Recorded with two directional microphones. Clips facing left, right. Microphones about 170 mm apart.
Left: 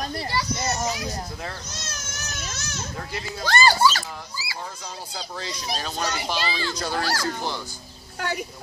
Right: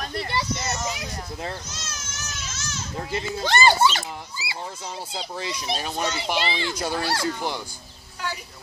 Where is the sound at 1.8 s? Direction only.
55° left (ahead or behind).